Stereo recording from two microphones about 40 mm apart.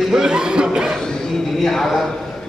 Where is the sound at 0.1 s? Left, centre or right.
Centre.